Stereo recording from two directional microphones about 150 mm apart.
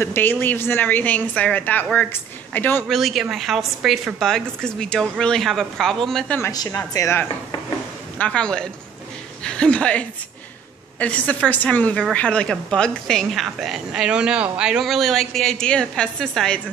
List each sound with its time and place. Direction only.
0.0 s a woman's voice: 15° left (ahead or behind)
2.9 s a woman's voice: centre (ahead or behind)
6.5 s a woman's voice: 25° left (ahead or behind)
8.2 s a woman's voice: 5° left (ahead or behind)